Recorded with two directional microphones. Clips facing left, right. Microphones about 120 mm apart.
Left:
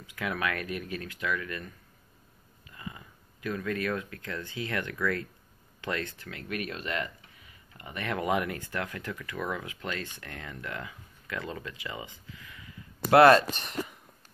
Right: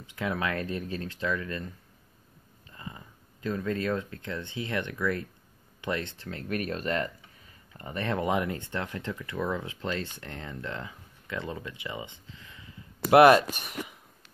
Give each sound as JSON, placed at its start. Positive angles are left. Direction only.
{"t": 0.0, "sound": "speech", "side_deg": -25}
{"t": 2.7, "sound": "speech", "side_deg": -30}